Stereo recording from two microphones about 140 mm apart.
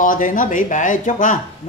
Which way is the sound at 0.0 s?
70° left (ahead or behind).